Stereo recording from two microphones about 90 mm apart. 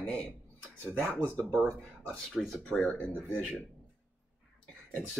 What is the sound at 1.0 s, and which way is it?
Speech, 20° right (ahead or behind).